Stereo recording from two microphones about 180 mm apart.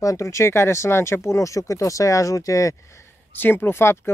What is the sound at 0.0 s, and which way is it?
Speech, 15° left (ahead or behind).